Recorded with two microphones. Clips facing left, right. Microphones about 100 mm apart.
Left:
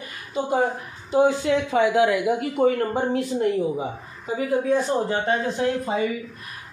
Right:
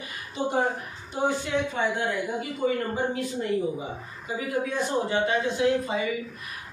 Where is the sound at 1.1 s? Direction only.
90° left; by 2.7 s 75° left (ahead or behind).